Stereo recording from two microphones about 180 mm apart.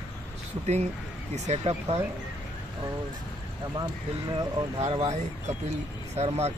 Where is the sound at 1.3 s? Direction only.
40° right (ahead or behind).